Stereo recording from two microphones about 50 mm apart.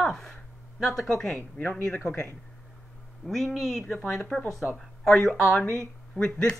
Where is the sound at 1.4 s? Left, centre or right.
Left.